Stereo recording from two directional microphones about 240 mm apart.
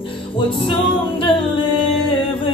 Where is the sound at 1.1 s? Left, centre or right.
Centre.